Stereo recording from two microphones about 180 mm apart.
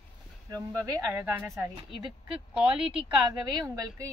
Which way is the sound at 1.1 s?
10° right (ahead or behind).